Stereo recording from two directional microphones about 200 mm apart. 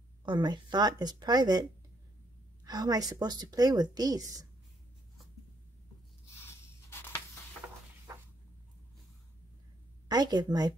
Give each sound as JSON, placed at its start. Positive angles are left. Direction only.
{"t": 0.2, "sound": "a woman's voice", "side_deg": -20}
{"t": 10.0, "sound": "a woman's voice", "side_deg": -20}